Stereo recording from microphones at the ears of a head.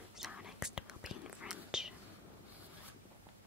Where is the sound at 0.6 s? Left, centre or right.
Left.